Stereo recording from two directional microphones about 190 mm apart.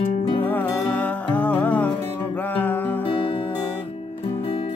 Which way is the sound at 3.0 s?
30° left (ahead or behind).